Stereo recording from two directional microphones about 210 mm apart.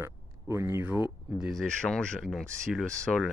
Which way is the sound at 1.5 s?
Centre (ahead or behind).